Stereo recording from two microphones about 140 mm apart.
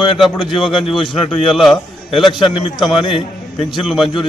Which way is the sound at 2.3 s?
35° left (ahead or behind).